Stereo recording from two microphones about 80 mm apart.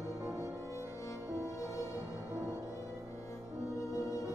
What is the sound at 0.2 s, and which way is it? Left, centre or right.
Music, right.